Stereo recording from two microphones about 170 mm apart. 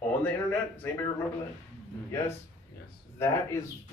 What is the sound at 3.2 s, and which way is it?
Speech, 15° left (ahead or behind).